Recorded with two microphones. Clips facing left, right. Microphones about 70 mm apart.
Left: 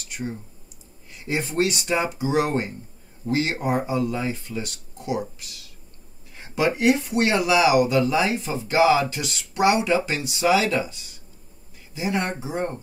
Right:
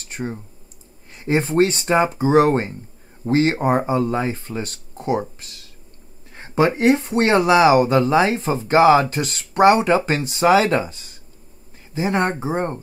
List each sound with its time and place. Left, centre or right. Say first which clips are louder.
0.0 s clicking: right 3 dB; right
1.1 s speech: right 7 dB; right